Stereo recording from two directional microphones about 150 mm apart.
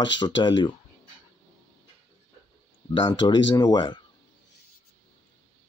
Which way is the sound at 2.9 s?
35° left (ahead or behind).